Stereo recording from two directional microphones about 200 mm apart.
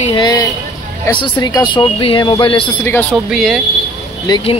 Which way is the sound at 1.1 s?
20° left (ahead or behind).